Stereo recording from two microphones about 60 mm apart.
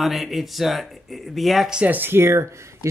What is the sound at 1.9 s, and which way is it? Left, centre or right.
Speech, right.